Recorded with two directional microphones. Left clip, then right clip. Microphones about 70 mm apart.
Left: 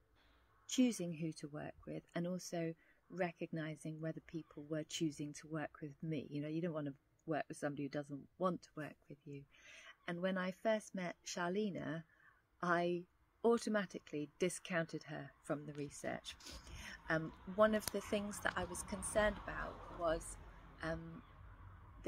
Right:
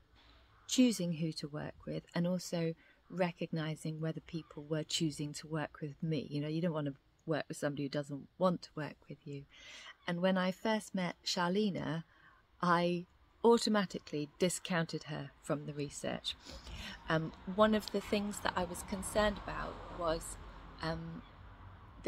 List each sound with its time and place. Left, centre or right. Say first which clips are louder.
0.7 s a woman's voice: right 6 dB; right
6.7 s speech: right 5 dB; right
7.2 s speech: right 5 dB; right
17.7 s speech: right 4 dB; right
19.7 s a sound: right 5 dB; left
20.0 s a sound: right 3 dB; right